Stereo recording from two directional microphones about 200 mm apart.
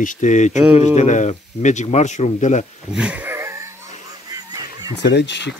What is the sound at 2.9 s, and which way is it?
Wheeze, 5° right (ahead or behind).